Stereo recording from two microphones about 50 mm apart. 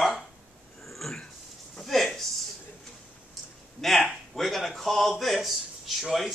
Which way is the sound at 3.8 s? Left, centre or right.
Centre.